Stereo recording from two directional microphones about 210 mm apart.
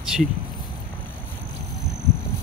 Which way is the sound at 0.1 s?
Centre (ahead or behind).